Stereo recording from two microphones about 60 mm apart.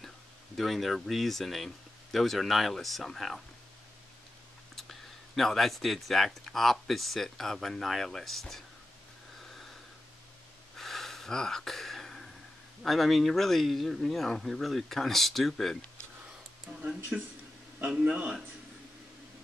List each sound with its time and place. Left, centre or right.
0.6 s speech: centre
4.7 s speech: centre
10.8 s gasp: centre
12.8 s speech: centre
17.1 s speech: centre